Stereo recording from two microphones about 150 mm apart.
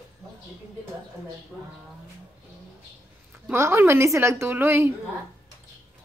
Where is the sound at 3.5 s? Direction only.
15° right (ahead or behind).